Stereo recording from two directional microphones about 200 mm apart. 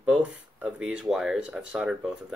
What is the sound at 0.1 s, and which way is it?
Speech, 5° right (ahead or behind).